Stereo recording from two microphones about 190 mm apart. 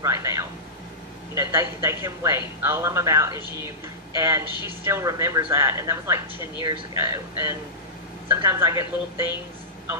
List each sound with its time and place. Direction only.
0.0 s a man's voice: 15° right (ahead or behind)